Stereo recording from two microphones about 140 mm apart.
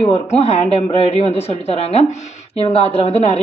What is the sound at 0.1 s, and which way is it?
A woman's voice, 50° left (ahead or behind).